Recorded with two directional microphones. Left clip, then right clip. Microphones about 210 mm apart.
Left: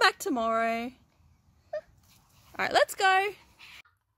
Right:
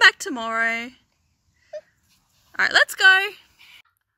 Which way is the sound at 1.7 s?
30° right (ahead or behind).